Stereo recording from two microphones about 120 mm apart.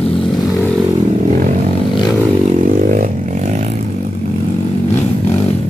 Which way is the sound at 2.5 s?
90° right.